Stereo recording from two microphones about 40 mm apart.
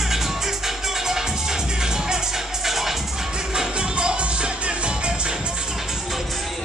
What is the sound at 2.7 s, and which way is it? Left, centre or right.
Music, centre.